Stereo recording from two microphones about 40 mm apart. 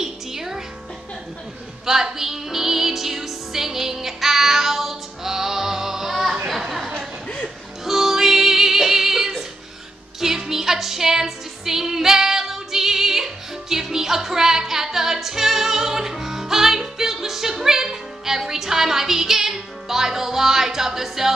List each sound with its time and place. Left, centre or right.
0.0 s music: centre
1.9 s music: centre
7.2 s music: left
7.8 s music: centre